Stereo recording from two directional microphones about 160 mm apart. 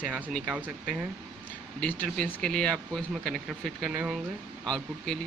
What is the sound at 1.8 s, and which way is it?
Speech, 10° left (ahead or behind).